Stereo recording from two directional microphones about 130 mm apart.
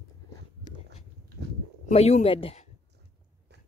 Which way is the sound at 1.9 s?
55° left (ahead or behind).